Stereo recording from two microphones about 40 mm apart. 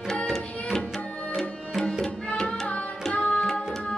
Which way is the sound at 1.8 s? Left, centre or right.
Centre.